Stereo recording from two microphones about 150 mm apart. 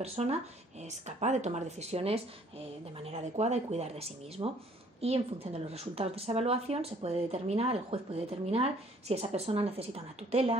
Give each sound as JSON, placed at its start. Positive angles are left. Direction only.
{"t": 0.0, "sound": "a woman's voice", "side_deg": -45}